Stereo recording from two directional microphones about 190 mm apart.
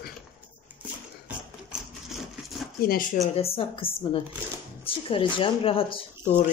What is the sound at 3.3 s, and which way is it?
Speech, 30° left (ahead or behind).